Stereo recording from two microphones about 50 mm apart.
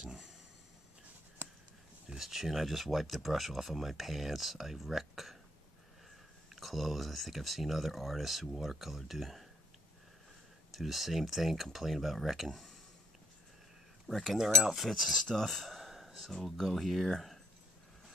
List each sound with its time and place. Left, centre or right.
2.0 s speech: centre
6.5 s speech: centre
10.7 s speech: centre
14.0 s speech: centre